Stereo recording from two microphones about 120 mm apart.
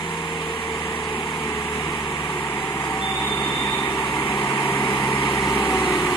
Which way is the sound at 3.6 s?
25° left (ahead or behind).